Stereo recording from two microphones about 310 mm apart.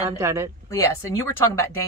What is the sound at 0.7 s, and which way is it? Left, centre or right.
Speech, centre.